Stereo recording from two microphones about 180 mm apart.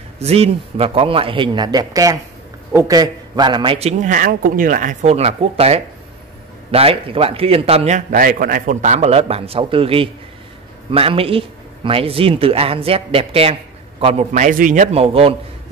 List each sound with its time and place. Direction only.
0.2 s speech: 35° right (ahead or behind)